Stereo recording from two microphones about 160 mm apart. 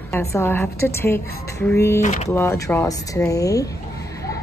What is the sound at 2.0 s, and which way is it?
Speech, 45° left (ahead or behind).